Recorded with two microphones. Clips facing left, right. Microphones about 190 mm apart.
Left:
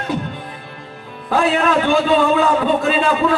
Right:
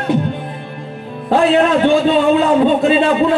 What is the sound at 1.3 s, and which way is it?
A man's voice, 25° right (ahead or behind).